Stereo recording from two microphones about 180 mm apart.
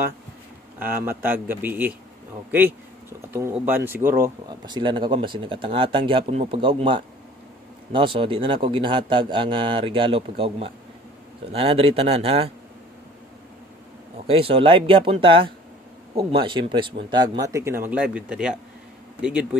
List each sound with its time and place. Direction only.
0.7 s speech: 10° right (ahead or behind)
4.2 s a man's voice: 25° right (ahead or behind)
14.2 s a man's voice: 30° right (ahead or behind); by 18.6 s 5° right (ahead or behind)